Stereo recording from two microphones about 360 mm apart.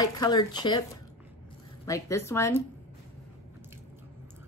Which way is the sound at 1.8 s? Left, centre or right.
Centre.